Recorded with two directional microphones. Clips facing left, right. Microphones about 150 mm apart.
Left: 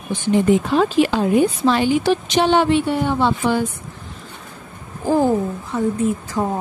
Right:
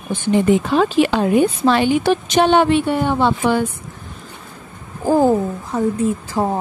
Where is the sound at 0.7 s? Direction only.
65° right (ahead or behind).